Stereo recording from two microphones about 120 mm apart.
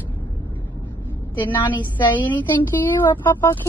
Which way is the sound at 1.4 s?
40° left (ahead or behind).